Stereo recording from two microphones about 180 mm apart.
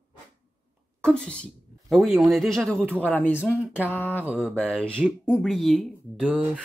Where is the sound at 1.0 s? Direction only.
5° left (ahead or behind).